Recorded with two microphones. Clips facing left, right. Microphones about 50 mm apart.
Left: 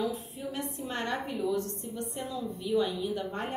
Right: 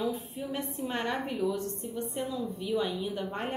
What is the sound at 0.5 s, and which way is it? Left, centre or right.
A woman's voice, centre.